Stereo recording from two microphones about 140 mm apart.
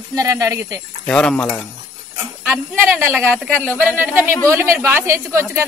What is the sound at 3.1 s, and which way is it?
Speech, 5° left (ahead or behind).